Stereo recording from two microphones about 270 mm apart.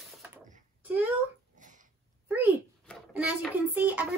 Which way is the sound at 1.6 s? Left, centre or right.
Right.